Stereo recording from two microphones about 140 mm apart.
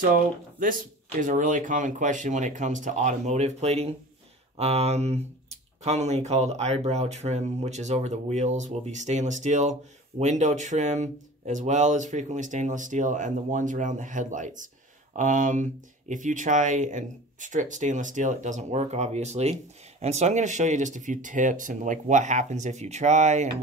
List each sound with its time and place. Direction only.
0.0 s speech: 75° right (ahead or behind)
1.3 s speech: 65° right (ahead or behind)